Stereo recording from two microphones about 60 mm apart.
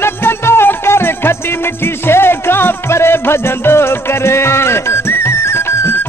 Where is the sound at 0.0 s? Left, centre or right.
Left.